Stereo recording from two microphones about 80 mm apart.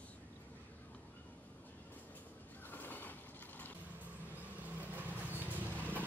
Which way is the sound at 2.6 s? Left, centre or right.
Left.